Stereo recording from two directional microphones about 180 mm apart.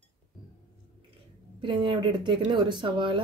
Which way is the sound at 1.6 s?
25° right (ahead or behind).